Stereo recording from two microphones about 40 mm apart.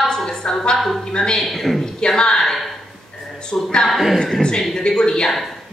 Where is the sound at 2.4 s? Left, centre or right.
Centre.